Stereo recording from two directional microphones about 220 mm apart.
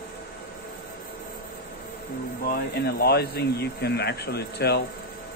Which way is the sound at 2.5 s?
45° left (ahead or behind).